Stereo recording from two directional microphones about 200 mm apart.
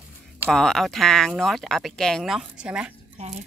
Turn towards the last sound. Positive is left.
turn(degrees=-30)  # may be behind; listen again after turning